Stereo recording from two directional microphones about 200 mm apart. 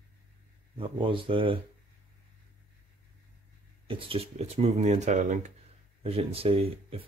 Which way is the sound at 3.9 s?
25° right (ahead or behind).